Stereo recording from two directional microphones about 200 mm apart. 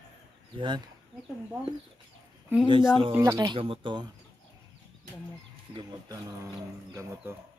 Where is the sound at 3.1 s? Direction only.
15° right (ahead or behind).